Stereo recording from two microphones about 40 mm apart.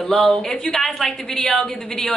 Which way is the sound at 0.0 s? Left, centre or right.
Centre.